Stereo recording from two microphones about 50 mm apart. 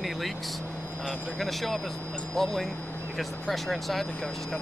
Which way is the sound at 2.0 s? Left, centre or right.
Left.